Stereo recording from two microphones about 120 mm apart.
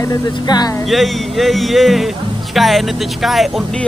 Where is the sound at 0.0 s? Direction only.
35° left (ahead or behind).